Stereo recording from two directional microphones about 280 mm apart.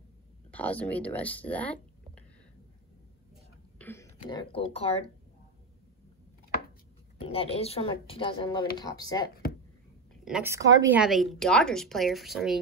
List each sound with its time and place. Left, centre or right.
0.5 s speech: centre
3.7 s speech: centre
7.2 s speech: left
10.2 s speech: centre